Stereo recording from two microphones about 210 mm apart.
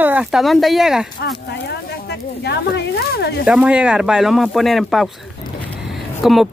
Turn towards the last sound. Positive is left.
turn(degrees=0)  # may be behind; listen again after turning